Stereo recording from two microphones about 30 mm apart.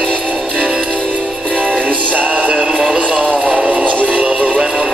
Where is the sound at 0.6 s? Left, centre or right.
Right.